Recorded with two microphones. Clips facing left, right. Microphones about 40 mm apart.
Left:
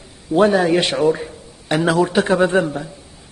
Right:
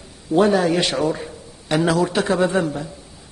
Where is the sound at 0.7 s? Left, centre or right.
Left.